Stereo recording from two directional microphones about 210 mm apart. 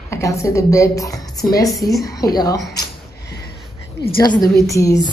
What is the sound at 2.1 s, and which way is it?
Speech, 15° left (ahead or behind).